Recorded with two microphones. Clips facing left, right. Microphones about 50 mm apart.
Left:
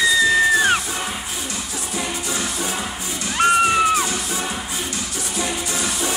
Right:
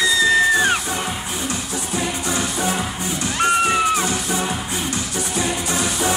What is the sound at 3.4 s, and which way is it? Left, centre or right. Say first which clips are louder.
Music: left 2 dB; centre.